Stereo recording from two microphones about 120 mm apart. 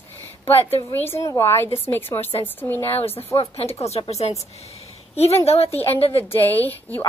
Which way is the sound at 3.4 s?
60° left (ahead or behind).